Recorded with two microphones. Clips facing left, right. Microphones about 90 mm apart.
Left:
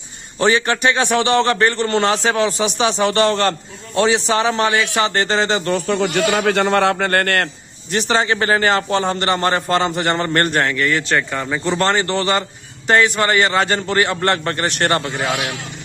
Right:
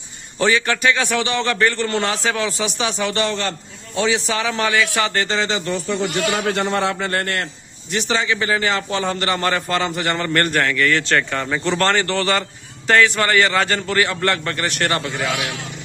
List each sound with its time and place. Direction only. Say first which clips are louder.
0.4 s a man's voice: left 2 dB; 30° left (ahead or behind)
3.0 s a man's voice: left 6 dB; 45° left (ahead or behind)
5.7 s a man's voice: left 4 dB; 60° left (ahead or behind)
7.9 s a man's voice: left 3 dB; 45° left (ahead or behind); by 10.9 s 30° left (ahead or behind)
10.9 s a man's voice: even; 10° left (ahead or behind); by 15.4 s 30° left (ahead or behind)